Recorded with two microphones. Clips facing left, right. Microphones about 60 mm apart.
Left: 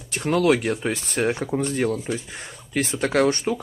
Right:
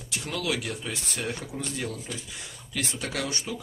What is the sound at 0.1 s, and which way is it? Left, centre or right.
Speech, left.